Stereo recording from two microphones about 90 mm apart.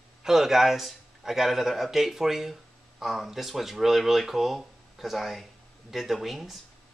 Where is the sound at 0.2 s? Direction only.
5° right (ahead or behind).